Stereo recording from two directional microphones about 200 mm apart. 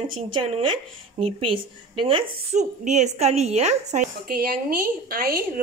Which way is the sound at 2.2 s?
40° right (ahead or behind).